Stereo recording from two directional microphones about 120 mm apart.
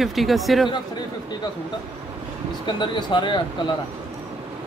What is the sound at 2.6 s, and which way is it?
Speech, 40° left (ahead or behind).